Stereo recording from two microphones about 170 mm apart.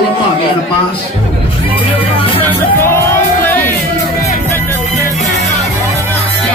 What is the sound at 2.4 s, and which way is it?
Music, 15° left (ahead or behind).